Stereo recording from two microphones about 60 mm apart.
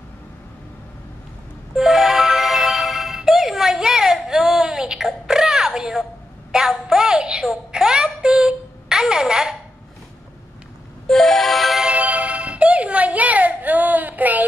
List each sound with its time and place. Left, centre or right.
1.8 s music: centre
6.5 s child singing: centre
11.1 s music: centre
11.8 s music: right